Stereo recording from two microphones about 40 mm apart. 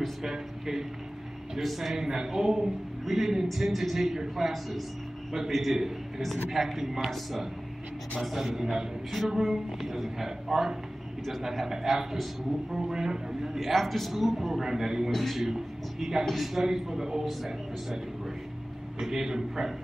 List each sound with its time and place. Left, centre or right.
0.2 s a man's voice: centre
11.2 s speech: centre
12.8 s a man's voice: centre
13.6 s speech: centre
14.6 s a man's voice: centre
15.0 s speech: centre
15.4 s a man's voice: centre
16.3 s a man's voice: centre
18.9 s a man's voice: centre